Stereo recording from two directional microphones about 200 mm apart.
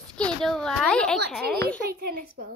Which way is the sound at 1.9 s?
45° right (ahead or behind).